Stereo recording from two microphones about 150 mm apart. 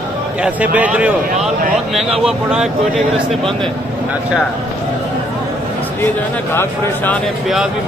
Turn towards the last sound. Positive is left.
turn(degrees=0)  # may be behind; listen again after turning